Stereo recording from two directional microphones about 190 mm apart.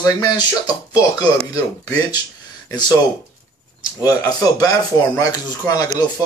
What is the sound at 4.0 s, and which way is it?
Speech, 20° left (ahead or behind).